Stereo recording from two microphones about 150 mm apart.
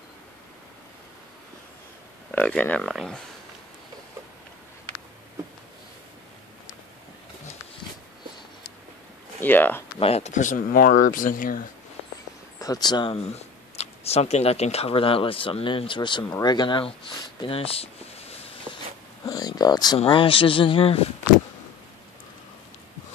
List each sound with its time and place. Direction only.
2.3 s speech: 10° left (ahead or behind)
2.9 s speech: centre (ahead or behind)
9.4 s speech: 10° left (ahead or behind)
9.9 s speech: 40° left (ahead or behind); by 11.6 s 65° left (ahead or behind)
12.5 s speech: 25° left (ahead or behind)
19.2 s a sound: 25° left (ahead or behind)
20.0 s speech: 35° left (ahead or behind)